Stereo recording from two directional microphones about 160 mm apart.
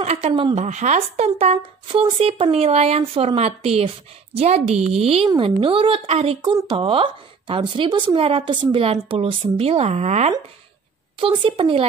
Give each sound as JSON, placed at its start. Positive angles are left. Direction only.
{"t": 0.0, "sound": "a sound", "side_deg": -40}
{"t": 0.3, "sound": "a woman's voice", "side_deg": -30}
{"t": 0.6, "sound": "speech", "side_deg": -45}
{"t": 11.1, "sound": "speech", "side_deg": -35}